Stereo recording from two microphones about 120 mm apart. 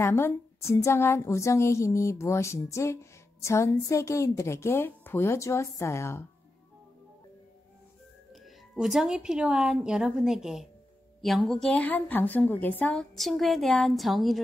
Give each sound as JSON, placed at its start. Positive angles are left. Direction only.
{"t": 0.0, "sound": "a woman's voice", "side_deg": 20}
{"t": 8.7, "sound": "a woman's voice", "side_deg": -5}
{"t": 13.1, "sound": "a woman's voice", "side_deg": 0}